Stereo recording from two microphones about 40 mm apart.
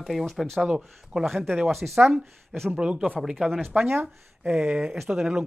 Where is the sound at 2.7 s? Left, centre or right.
Right.